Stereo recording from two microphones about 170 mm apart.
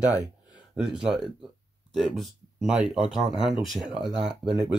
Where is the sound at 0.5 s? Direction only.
5° right (ahead or behind).